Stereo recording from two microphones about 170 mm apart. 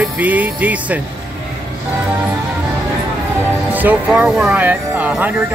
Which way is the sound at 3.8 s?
5° right (ahead or behind).